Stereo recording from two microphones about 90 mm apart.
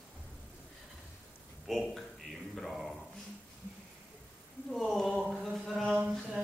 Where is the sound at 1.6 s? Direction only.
Centre (ahead or behind).